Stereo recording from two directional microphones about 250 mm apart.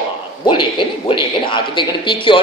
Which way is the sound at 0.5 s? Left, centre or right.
Centre.